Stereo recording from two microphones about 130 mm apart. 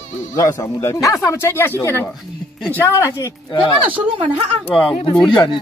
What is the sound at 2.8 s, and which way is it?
Speech, 25° left (ahead or behind).